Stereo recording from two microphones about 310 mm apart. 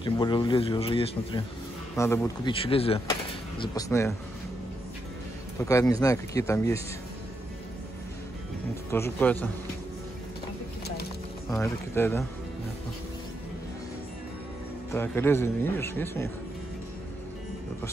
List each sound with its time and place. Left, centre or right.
0.0 s speech: centre
5.6 s speech: centre
8.9 s speech: centre
11.5 s speech: centre
14.9 s speech: centre